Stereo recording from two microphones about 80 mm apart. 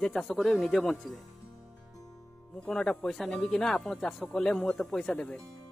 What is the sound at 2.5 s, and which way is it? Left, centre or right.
A man's voice, centre.